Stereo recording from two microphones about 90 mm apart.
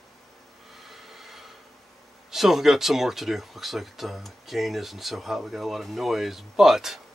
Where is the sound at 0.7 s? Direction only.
Centre (ahead or behind).